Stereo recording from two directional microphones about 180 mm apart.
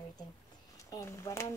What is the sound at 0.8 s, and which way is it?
Speech, 20° left (ahead or behind).